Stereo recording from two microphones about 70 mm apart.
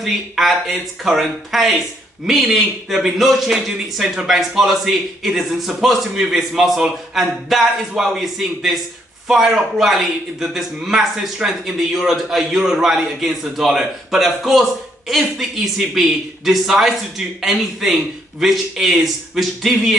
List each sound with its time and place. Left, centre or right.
0.0 s a man's voice: centre